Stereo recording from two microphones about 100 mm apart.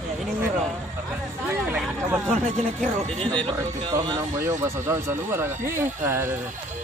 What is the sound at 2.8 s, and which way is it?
Speech, 10° left (ahead or behind).